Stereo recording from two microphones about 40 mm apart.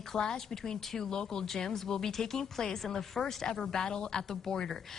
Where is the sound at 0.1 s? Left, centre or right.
Centre.